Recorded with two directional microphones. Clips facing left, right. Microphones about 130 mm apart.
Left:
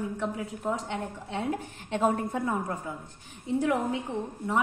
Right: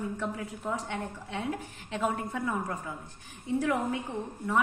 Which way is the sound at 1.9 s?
35° left (ahead or behind).